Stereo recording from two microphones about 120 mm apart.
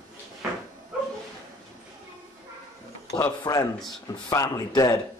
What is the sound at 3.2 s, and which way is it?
A man's voice, 30° left (ahead or behind).